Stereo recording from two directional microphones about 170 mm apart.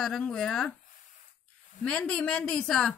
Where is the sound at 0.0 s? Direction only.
5° left (ahead or behind).